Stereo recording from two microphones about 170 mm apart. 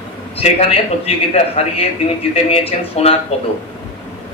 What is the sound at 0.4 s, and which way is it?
A man's voice, 35° left (ahead or behind).